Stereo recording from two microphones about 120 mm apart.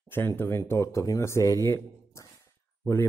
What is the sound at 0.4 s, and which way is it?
A man's voice, 20° left (ahead or behind).